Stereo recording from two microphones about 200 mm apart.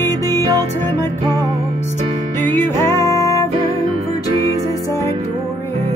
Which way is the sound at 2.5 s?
15° left (ahead or behind).